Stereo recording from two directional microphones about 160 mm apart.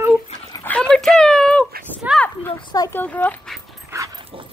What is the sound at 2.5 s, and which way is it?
Speech, 30° left (ahead or behind).